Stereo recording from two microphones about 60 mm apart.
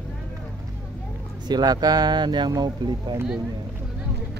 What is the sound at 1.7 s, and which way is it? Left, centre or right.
Speech, right.